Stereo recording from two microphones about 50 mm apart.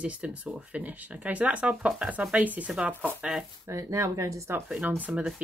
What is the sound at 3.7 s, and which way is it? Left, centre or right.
Speech, right.